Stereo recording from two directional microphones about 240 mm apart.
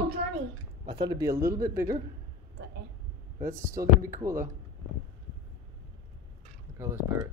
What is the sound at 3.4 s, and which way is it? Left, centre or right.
A man's voice, centre.